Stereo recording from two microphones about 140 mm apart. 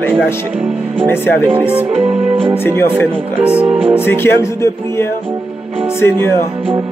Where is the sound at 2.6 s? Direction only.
15° left (ahead or behind).